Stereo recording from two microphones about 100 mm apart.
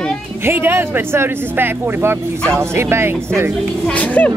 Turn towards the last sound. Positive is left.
turn(degrees=15)  # may be behind; listen again after turning